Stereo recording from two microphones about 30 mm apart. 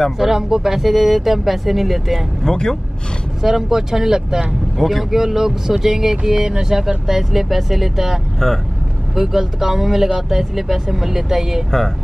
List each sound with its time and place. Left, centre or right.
0.2 s speech: centre
2.5 s speech: left
3.4 s speech: centre
4.7 s speech: centre
5.1 s speech: centre
7.1 s speech: centre
8.4 s speech: centre
9.1 s speech: centre